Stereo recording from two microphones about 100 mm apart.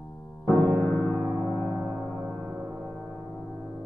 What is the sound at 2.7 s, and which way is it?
Music, centre (ahead or behind).